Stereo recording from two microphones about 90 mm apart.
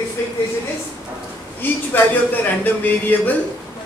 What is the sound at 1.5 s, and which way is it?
A man's voice, 20° left (ahead or behind).